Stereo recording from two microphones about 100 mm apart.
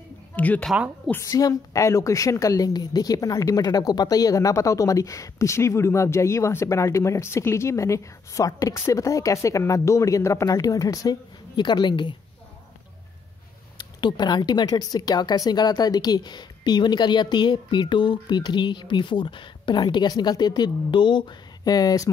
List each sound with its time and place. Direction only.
0.4 s speech: 15° left (ahead or behind)
1.1 s a woman's voice: 35° left (ahead or behind); by 12.2 s 50° left (ahead or behind)
13.7 s speech: 45° left (ahead or behind)